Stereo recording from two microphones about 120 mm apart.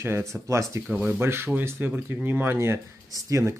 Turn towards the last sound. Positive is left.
turn(degrees=-25)  # may be behind; listen again after turning